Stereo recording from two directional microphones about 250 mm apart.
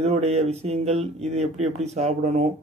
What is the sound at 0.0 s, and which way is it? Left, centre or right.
A man's voice, right.